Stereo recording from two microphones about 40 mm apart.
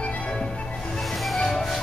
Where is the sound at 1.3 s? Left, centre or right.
Centre.